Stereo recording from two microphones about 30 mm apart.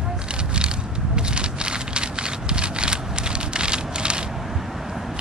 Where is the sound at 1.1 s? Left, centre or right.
Right.